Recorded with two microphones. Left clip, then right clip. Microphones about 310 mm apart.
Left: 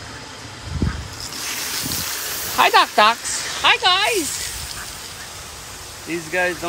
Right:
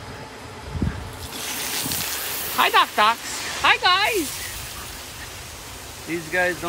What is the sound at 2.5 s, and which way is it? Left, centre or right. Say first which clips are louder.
Speech: left 4 dB; centre.